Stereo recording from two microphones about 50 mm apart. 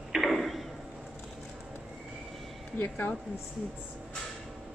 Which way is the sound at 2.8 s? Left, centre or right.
Left.